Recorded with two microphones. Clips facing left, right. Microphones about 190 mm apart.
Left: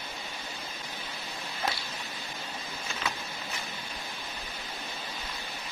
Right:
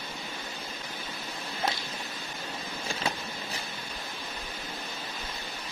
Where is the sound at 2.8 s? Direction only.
30° right (ahead or behind).